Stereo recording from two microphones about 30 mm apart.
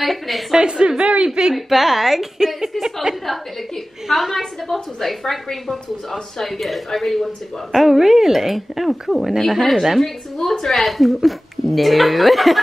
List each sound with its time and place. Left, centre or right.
0.0 s a woman's voice: centre
0.7 s speech: right
1.5 s a woman's voice: centre
3.3 s a woman's voice: centre
5.0 s a woman's voice: centre
7.7 s a woman's voice: centre